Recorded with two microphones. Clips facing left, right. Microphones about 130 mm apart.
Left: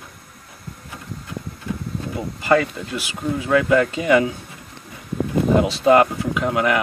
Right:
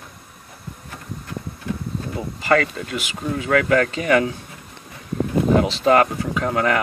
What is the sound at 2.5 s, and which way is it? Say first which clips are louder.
Speech: left 1 dB; 15° left (ahead or behind).